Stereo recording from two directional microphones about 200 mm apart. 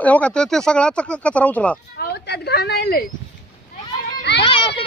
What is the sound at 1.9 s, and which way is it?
A woman's voice, 55° left (ahead or behind).